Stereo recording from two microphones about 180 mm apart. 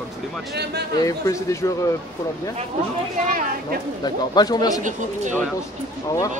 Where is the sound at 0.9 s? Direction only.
20° left (ahead or behind).